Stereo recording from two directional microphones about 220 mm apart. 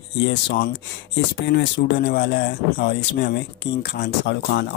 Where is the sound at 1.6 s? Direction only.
50° left (ahead or behind).